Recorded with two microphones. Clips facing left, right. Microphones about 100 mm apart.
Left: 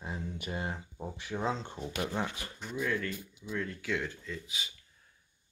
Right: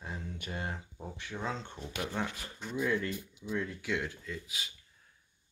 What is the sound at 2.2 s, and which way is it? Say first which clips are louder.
Speech: even; centre (ahead or behind).